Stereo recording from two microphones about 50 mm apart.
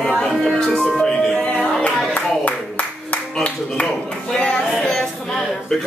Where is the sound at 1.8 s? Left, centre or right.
Left.